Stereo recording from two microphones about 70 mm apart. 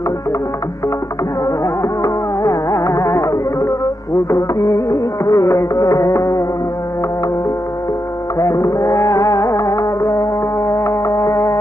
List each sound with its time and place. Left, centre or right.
2.0 s music: left
8.4 s music: left